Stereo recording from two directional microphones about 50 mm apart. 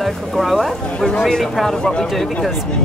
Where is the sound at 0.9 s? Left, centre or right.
Centre.